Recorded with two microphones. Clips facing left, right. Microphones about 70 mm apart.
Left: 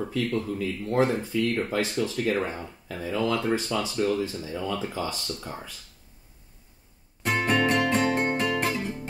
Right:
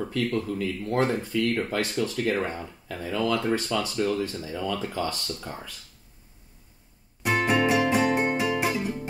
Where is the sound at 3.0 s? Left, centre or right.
Centre.